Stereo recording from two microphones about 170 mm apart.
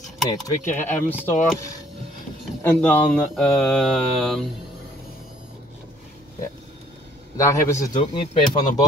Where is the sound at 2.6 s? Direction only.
10° left (ahead or behind).